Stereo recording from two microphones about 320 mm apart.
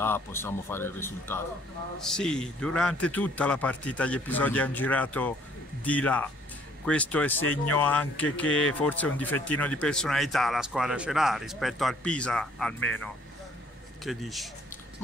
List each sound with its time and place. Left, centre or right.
0.0 s speech: centre
7.3 s speech: left
7.7 s speech: centre
14.0 s speech: centre